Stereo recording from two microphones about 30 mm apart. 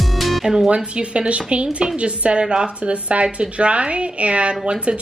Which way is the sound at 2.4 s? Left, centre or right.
Right.